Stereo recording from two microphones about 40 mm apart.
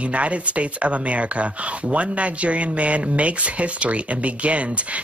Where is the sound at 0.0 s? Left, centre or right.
Right.